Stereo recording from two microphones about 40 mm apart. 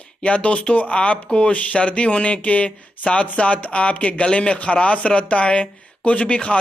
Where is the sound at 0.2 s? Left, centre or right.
Left.